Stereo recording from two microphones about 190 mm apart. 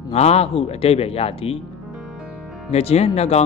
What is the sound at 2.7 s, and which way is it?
Speech, 35° left (ahead or behind).